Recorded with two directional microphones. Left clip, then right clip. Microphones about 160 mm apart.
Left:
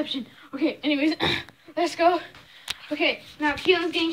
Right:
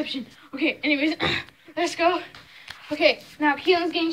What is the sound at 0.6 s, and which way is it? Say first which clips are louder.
Speech: right 1 dB; 15° left (ahead or behind).